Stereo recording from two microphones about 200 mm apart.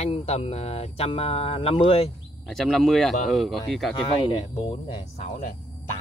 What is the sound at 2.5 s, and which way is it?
A man's voice, centre (ahead or behind).